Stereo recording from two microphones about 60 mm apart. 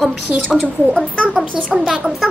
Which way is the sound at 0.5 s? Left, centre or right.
Centre.